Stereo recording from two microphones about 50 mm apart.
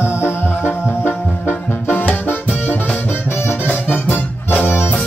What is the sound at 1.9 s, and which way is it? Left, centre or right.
Music, left.